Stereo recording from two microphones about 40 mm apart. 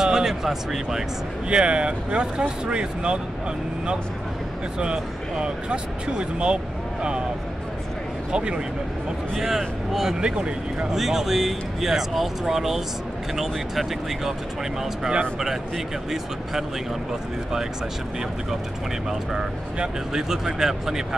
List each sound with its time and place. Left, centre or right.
0.0 s speech: centre
1.5 s speech: right
4.7 s speech: right
8.3 s speech: right
9.3 s speech: centre
10.2 s speech: right
10.9 s speech: centre
15.3 s speech: centre
19.0 s speech: centre